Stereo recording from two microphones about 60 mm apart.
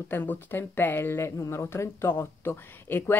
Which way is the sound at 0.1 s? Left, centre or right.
Left.